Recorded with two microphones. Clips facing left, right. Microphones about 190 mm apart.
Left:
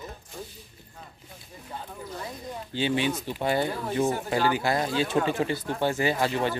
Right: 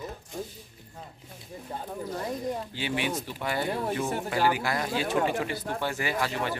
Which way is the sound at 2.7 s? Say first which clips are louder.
Left 4 dB; 25° left (ahead or behind).